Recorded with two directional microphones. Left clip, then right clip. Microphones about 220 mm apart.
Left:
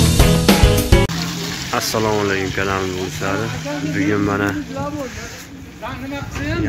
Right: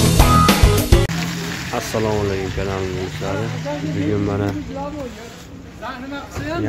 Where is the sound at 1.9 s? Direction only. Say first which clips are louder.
Left 2 dB; 15° left (ahead or behind).